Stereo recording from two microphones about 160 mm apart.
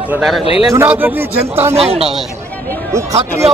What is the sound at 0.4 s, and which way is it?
Speech, 35° left (ahead or behind).